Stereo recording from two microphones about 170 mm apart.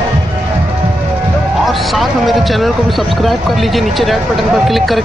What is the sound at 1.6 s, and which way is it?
Speech, centre (ahead or behind).